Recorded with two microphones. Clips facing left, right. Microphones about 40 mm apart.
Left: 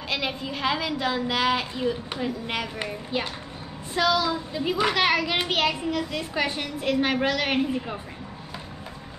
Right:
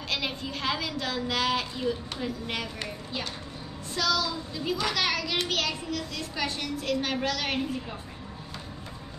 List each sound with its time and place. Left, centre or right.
0.1 s a woman's voice: centre